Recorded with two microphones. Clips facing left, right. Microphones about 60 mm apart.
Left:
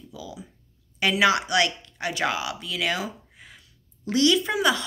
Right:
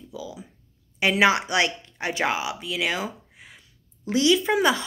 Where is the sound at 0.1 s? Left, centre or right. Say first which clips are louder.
Right 4 dB; centre.